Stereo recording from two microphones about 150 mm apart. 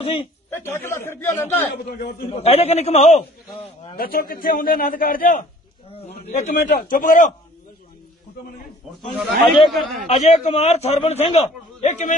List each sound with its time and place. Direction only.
0.0 s a man's voice: 40° left (ahead or behind)
0.5 s a man's voice: 15° left (ahead or behind)
2.3 s a man's voice: 45° left (ahead or behind)
3.9 s a man's voice: 80° left; by 7.3 s 60° left (ahead or behind)
9.1 s speech: centre (ahead or behind)
10.0 s a man's voice: 50° left (ahead or behind)